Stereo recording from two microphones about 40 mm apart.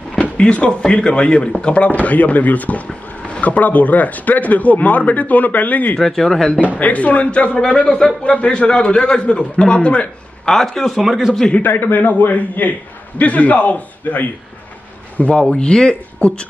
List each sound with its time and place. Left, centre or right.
0.4 s a man's voice: left
1.9 s speech: left
5.9 s speech: centre
6.6 s a man's voice: left
10.4 s a man's voice: centre
11.6 s a man's voice: left
15.3 s a man's voice: left